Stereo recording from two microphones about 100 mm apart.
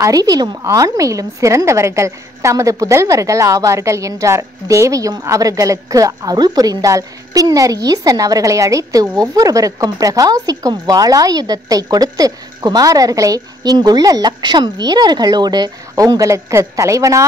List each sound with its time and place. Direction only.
0.0 s a woman's voice: 40° right (ahead or behind)
15.9 s a woman's voice: 35° right (ahead or behind)